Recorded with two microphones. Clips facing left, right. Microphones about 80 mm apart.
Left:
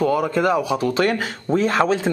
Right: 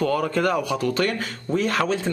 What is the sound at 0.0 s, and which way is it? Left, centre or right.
A man's voice, centre.